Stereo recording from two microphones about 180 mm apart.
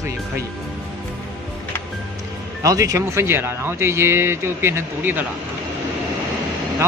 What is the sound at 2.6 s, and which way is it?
Speech, 20° right (ahead or behind).